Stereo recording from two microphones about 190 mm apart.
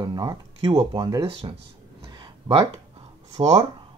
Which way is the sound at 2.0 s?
25° right (ahead or behind).